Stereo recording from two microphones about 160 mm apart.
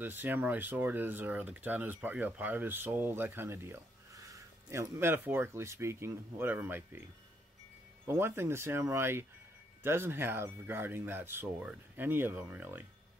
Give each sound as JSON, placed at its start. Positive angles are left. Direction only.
{"t": 0.0, "sound": "speech", "side_deg": -10}
{"t": 8.1, "sound": "speech", "side_deg": -15}